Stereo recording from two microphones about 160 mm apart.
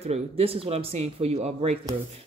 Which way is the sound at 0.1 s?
35° right (ahead or behind).